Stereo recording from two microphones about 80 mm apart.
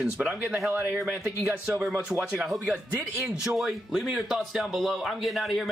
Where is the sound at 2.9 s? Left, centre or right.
Centre.